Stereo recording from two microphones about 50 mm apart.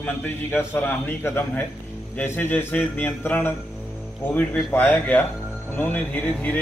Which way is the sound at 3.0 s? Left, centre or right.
Left.